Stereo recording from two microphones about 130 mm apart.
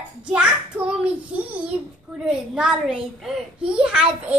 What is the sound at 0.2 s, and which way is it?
Child singing, 10° right (ahead or behind).